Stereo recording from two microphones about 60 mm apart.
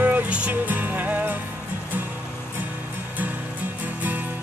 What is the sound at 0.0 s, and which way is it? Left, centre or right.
Music, right.